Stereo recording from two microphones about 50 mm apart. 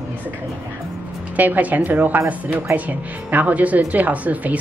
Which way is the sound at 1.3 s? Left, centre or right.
Right.